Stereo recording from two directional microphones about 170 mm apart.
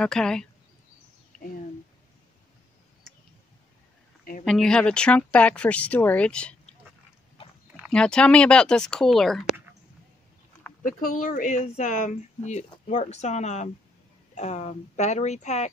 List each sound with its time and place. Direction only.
0.0 s speech: 5° left (ahead or behind)
4.2 s a sound: 55° left (ahead or behind)
4.5 s speech: 5° left (ahead or behind)
7.9 s speech: 5° left (ahead or behind)
10.8 s speech: 50° left (ahead or behind)